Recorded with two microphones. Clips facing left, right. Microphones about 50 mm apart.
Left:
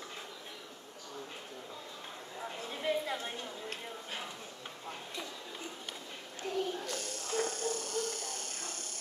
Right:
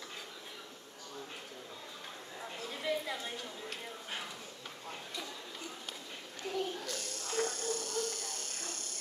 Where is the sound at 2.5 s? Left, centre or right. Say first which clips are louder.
Left 2 dB; left.